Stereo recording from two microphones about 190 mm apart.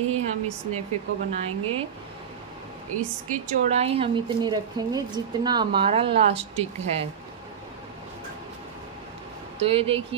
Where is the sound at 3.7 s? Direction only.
30° right (ahead or behind).